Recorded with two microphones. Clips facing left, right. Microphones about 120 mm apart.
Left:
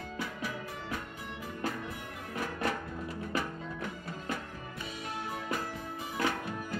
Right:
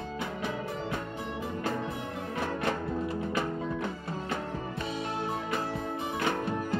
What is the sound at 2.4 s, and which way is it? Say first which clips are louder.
Music: right 2 dB; 25° right (ahead or behind).